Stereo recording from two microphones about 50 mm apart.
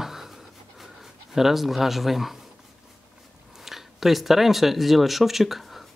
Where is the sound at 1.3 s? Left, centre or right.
Centre.